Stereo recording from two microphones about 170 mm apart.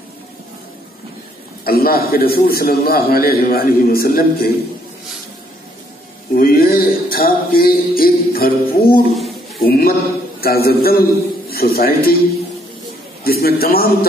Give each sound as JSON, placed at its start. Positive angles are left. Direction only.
{"t": 1.6, "sound": "a man's voice", "side_deg": 60}
{"t": 6.3, "sound": "a man's voice", "side_deg": 60}
{"t": 13.2, "sound": "a man's voice", "side_deg": 60}